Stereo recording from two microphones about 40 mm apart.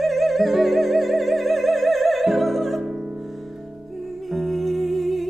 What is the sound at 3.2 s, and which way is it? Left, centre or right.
Music, centre.